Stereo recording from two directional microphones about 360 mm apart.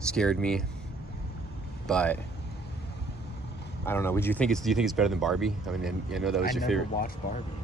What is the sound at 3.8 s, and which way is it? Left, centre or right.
Speech, centre.